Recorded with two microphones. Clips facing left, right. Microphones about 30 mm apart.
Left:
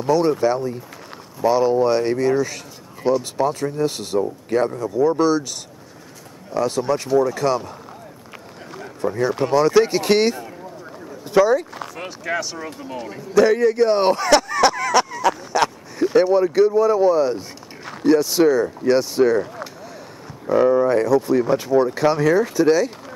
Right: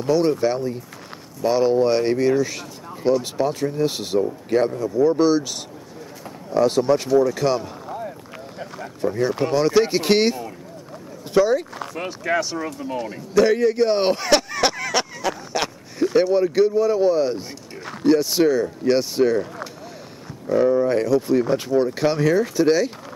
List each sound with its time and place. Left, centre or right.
0.0 s speech: centre
6.5 s speech: centre
7.1 s speech: centre
8.7 s speech: centre
11.7 s speech: centre
20.4 s speech: centre
20.9 s speech: centre